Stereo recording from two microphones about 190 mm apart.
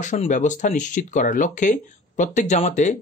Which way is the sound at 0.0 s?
40° left (ahead or behind).